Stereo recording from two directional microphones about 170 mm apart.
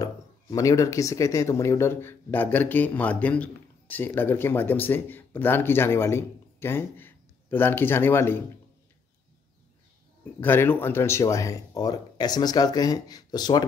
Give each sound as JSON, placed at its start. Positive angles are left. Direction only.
{"t": 0.0, "sound": "speech", "side_deg": 20}
{"t": 10.4, "sound": "speech", "side_deg": 10}